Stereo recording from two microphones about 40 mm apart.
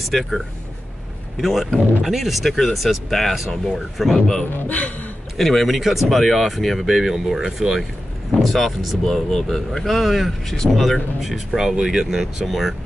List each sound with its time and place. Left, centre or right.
0.1 s speech: centre
1.4 s speech: centre
4.6 s speech: left
5.4 s speech: centre
8.5 s speech: centre
11.1 s speech: centre